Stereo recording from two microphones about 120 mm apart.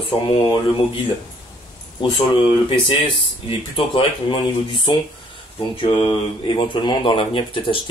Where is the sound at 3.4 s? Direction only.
45° left (ahead or behind).